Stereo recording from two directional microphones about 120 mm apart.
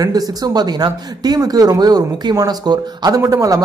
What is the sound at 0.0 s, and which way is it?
Speech, 30° right (ahead or behind).